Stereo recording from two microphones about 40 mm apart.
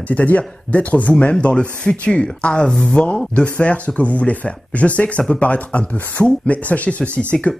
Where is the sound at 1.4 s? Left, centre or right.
Left.